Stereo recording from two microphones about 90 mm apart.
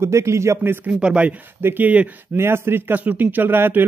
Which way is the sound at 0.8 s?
10° right (ahead or behind).